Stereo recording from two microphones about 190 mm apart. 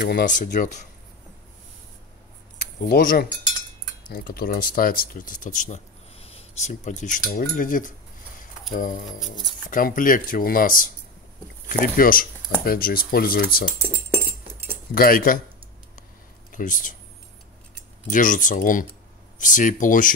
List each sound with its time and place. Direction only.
0.2 s speech: 40° left (ahead or behind)
2.6 s speech: 45° left (ahead or behind)
15.0 s speech: 50° left (ahead or behind)
16.5 s speech: 45° left (ahead or behind)
18.1 s speech: 45° left (ahead or behind)